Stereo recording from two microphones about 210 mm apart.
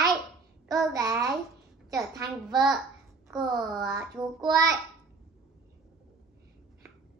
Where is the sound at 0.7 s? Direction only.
15° right (ahead or behind).